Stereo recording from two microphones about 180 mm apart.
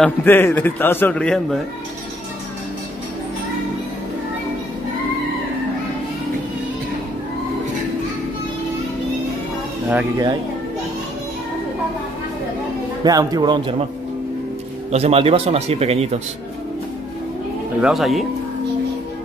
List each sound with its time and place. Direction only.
0.0 s a man's voice: 10° left (ahead or behind)
13.0 s speech: 20° right (ahead or behind)
14.9 s a man's voice: 35° right (ahead or behind)
17.7 s speech: 5° right (ahead or behind)